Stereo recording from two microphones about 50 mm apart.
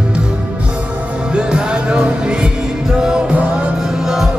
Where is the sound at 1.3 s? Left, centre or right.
Centre.